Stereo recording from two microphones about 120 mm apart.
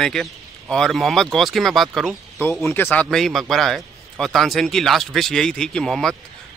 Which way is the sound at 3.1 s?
Centre (ahead or behind).